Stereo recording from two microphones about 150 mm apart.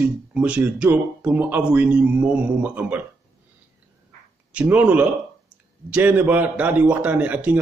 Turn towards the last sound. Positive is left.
turn(degrees=-10)  # may be behind; listen again after turning